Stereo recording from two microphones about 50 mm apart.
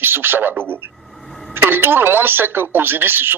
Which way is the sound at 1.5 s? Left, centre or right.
Right.